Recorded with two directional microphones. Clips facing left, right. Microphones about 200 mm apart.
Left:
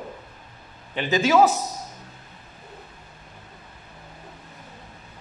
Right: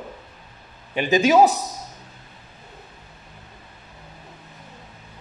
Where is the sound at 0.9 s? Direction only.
15° right (ahead or behind).